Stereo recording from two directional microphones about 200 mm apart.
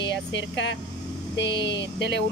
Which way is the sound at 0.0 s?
65° left (ahead or behind).